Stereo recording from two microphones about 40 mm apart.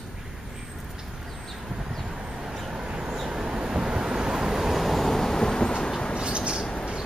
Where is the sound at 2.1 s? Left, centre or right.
Centre.